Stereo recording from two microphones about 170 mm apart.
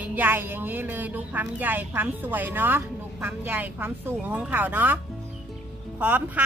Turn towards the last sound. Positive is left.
turn(degrees=-10)  # may be behind; listen again after turning